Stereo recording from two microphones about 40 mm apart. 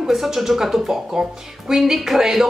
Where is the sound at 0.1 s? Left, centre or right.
Centre.